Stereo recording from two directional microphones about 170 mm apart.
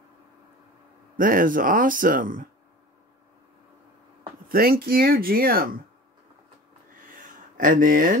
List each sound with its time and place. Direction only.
1.1 s speech: 55° right (ahead or behind)
4.5 s speech: 60° right (ahead or behind)
7.0 s a sound: 50° right (ahead or behind)